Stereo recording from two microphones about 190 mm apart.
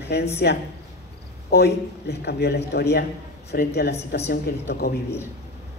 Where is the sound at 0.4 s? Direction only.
60° left (ahead or behind).